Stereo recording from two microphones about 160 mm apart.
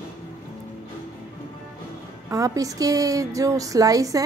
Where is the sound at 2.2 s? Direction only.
20° right (ahead or behind).